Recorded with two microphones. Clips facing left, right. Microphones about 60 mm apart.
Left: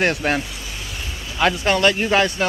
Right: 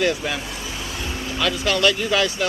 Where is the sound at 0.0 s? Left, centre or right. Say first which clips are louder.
Left 2 dB; left.